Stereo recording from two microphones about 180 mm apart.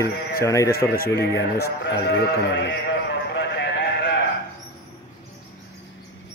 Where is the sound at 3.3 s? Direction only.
75° left (ahead or behind).